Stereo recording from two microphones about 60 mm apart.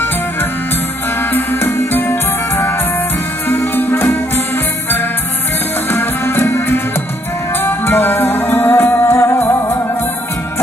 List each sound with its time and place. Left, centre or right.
1.3 s music: left
5.9 s music: left